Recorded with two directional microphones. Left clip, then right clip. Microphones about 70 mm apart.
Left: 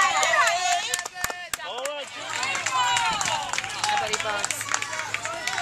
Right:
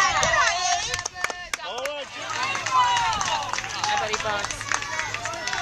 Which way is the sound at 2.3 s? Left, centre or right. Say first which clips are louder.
Right 2 dB; left.